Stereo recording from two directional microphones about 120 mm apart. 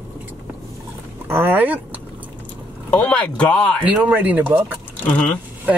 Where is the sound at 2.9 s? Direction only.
10° left (ahead or behind).